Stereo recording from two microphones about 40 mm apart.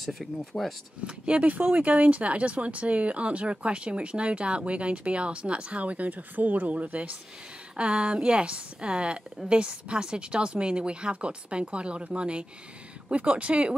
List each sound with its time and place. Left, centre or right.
0.0 s speech: centre
1.0 s speech: right
6.7 s speech: right
7.7 s speech: right